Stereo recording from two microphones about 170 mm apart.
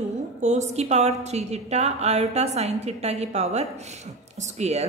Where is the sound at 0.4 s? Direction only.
45° right (ahead or behind).